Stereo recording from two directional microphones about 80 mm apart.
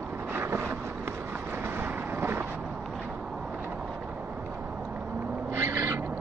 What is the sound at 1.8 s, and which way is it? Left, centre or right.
Vehicle, right.